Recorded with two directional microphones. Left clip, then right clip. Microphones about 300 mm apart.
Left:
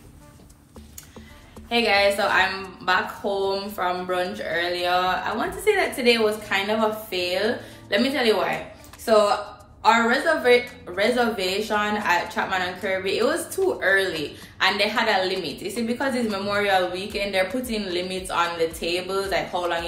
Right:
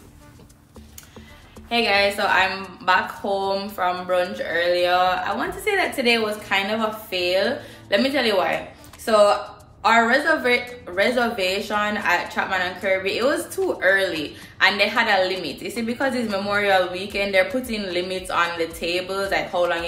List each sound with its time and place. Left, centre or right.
1.7 s a woman's voice: centre